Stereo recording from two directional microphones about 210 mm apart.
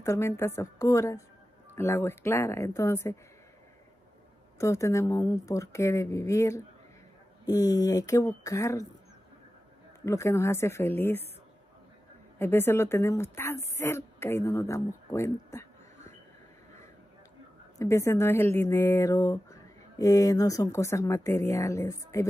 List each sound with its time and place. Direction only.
0.0 s speech: 15° left (ahead or behind)
4.6 s speech: 15° left (ahead or behind)
10.0 s speech: 15° left (ahead or behind)
12.4 s speech: 10° left (ahead or behind)
17.7 s speech: 15° left (ahead or behind)